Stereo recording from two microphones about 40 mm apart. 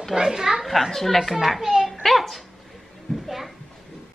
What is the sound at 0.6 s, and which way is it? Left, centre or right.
A child's voice, centre.